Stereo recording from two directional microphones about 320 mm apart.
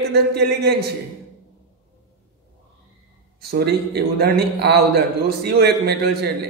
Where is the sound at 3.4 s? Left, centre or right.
Right.